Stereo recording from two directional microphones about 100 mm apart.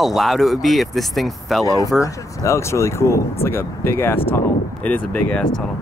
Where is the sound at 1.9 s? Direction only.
30° left (ahead or behind).